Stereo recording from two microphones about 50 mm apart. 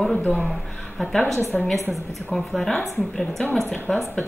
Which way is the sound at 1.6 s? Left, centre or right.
Centre.